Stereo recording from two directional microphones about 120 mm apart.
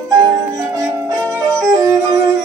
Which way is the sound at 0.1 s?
30° right (ahead or behind).